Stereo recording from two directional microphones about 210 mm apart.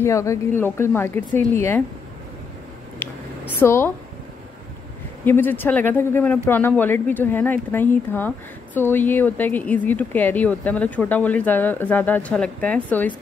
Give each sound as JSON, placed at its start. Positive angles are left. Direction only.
{"t": 0.0, "sound": "a woman's voice", "side_deg": 15}
{"t": 3.0, "sound": "a sound", "side_deg": 10}
{"t": 5.2, "sound": "a woman's voice", "side_deg": 10}